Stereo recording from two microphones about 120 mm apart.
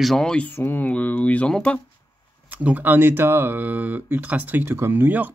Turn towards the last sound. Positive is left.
turn(degrees=-15)  # may be behind; listen again after turning